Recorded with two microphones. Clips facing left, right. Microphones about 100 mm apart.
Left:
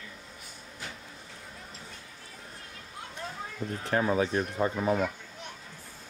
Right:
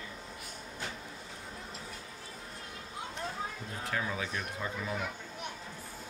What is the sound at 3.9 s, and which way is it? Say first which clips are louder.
Speech: left 10 dB; 40° left (ahead or behind).